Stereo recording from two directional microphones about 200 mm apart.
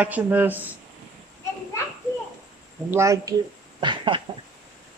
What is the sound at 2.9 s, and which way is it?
Speech, 15° right (ahead or behind).